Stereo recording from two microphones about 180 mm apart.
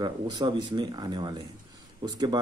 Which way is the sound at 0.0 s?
25° right (ahead or behind).